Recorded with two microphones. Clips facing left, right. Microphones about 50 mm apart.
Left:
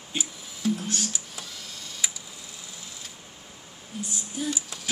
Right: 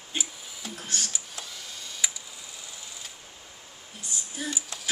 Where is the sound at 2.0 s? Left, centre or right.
Centre.